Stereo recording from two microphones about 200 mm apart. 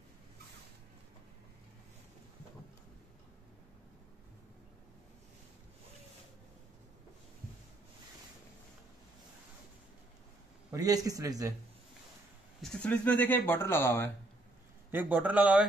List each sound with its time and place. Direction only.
10.7 s a man's voice: 15° right (ahead or behind)
12.6 s speech: 5° left (ahead or behind)
14.9 s a man's voice: 10° right (ahead or behind)